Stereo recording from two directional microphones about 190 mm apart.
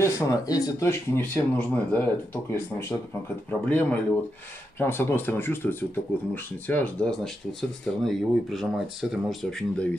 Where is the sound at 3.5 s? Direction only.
10° left (ahead or behind).